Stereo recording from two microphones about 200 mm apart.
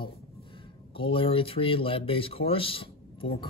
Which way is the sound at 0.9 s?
25° left (ahead or behind).